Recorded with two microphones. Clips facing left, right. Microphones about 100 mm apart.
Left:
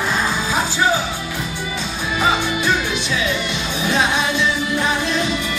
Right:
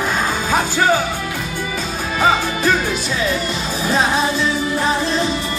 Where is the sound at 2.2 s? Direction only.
40° right (ahead or behind).